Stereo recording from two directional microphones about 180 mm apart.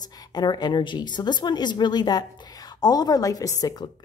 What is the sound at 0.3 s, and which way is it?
Speech, 25° left (ahead or behind).